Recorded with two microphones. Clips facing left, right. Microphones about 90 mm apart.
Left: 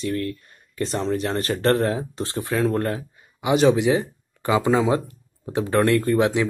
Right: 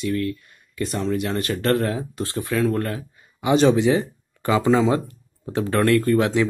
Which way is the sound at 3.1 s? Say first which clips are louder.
Right 4 dB; 10° left (ahead or behind).